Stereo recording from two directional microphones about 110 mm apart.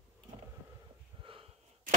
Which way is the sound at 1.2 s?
55° right (ahead or behind).